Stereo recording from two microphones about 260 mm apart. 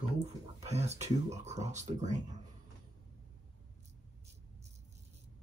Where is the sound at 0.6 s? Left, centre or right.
Right.